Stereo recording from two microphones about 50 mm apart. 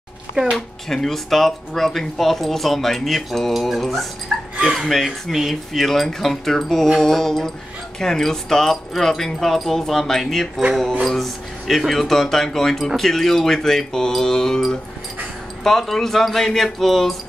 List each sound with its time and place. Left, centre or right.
0.6 s speech: centre